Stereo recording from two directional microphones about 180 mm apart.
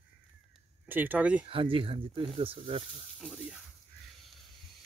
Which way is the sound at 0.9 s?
10° right (ahead or behind).